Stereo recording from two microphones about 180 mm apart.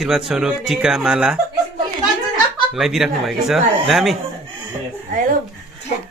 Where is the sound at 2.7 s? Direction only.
Centre (ahead or behind).